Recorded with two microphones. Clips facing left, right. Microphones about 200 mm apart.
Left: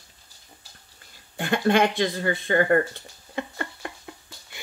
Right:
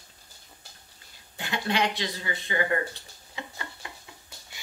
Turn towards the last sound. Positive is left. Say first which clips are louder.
# left 6 dB
turn(degrees=55)  # may be behind; listen again after turning